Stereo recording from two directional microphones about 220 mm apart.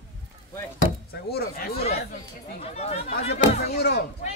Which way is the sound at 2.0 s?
30° left (ahead or behind).